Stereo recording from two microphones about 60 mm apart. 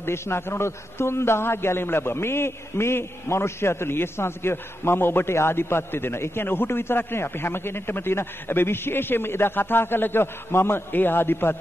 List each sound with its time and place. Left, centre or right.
0.0 s a man's voice: left